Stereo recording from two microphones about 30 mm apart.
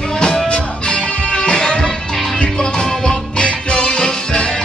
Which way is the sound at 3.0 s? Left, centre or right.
Left.